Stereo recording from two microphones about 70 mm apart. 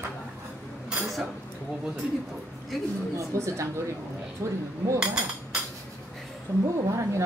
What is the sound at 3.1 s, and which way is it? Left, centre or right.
Speech, right.